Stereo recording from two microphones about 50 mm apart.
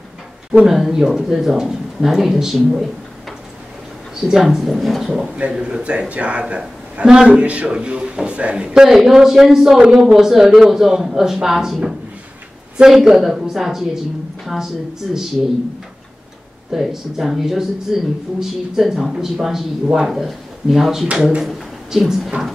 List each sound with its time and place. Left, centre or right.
0.7 s a woman's voice: centre
5.5 s a man's voice: centre
12.8 s a woman's voice: centre
16.7 s a woman's voice: centre
21.1 s a man's voice: right
21.4 s a sound: centre